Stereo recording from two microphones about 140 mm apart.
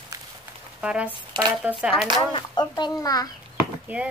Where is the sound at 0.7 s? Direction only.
10° right (ahead or behind).